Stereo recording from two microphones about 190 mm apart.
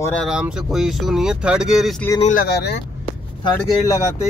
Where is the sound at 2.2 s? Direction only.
50° left (ahead or behind).